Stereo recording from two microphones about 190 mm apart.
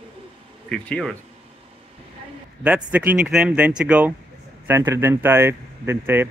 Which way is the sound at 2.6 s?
5° right (ahead or behind).